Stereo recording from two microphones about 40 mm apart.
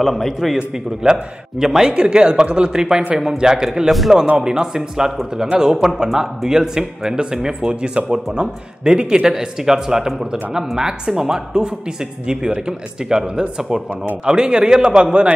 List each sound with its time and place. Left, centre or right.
0.0 s a man's voice: centre
2.0 s speech: right